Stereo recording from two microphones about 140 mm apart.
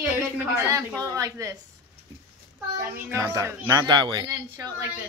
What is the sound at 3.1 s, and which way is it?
Speech, 20° right (ahead or behind).